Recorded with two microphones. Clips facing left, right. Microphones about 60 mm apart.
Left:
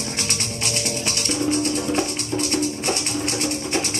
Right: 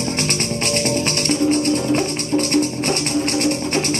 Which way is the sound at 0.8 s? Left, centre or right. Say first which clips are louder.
Right 7 dB; right.